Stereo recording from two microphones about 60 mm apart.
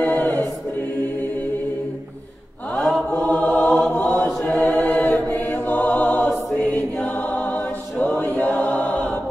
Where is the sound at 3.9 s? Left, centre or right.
Left.